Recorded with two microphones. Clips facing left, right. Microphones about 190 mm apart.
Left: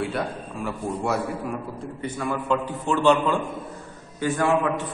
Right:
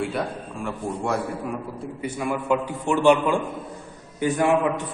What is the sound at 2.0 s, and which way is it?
A man's voice, 10° right (ahead or behind).